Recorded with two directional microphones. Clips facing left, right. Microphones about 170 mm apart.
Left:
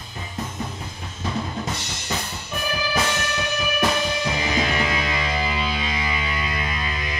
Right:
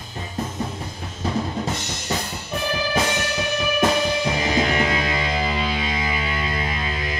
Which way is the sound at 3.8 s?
30° right (ahead or behind).